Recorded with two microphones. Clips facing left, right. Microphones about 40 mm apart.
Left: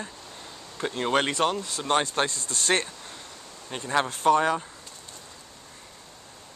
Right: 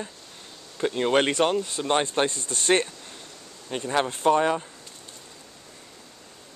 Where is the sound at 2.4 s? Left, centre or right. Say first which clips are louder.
Right 3 dB; right.